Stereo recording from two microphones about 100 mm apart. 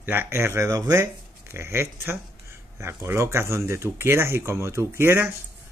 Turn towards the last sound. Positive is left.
turn(degrees=-25)  # may be behind; listen again after turning